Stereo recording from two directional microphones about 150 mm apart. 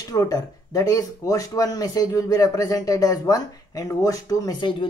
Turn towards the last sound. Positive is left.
turn(degrees=25)  # may be behind; listen again after turning